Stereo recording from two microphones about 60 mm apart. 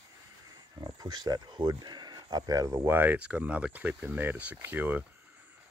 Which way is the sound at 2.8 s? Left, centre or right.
Right.